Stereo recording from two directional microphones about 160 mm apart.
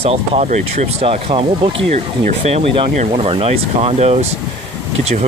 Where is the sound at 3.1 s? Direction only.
35° right (ahead or behind).